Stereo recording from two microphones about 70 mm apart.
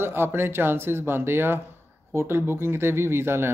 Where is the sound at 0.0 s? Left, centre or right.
Right.